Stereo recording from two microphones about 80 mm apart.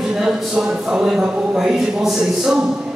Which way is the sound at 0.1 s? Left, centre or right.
Centre.